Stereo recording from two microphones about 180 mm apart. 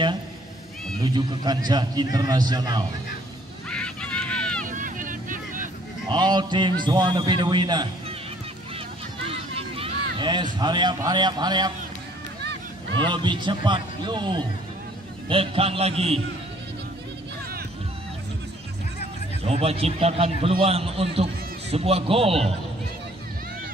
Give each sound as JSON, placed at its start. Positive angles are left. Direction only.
{"t": 1.0, "sound": "a man's voice", "side_deg": -25}
{"t": 3.7, "sound": "run", "side_deg": 5}
{"t": 4.6, "sound": "vehicle", "side_deg": -45}
{"t": 6.0, "sound": "a man's voice", "side_deg": -25}
{"t": 8.7, "sound": "a sound", "side_deg": -30}
{"t": 12.9, "sound": "a man's voice", "side_deg": -25}
{"t": 19.4, "sound": "a man's voice", "side_deg": -35}